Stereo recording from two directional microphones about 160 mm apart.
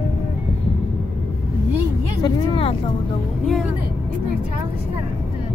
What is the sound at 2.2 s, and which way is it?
Vehicle, 35° left (ahead or behind).